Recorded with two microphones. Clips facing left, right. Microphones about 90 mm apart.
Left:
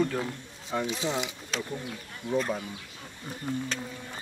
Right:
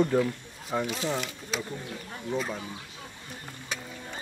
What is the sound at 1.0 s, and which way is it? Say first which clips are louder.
Speech: even; 20° left (ahead or behind).